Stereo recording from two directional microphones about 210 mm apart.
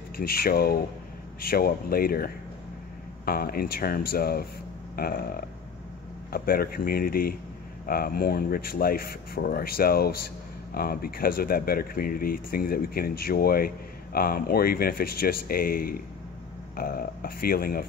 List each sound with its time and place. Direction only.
0.2 s speech: 45° left (ahead or behind)